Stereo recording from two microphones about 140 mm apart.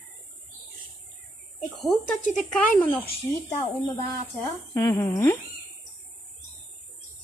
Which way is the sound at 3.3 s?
10° left (ahead or behind).